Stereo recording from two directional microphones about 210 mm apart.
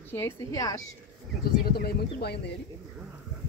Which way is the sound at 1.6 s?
50° left (ahead or behind).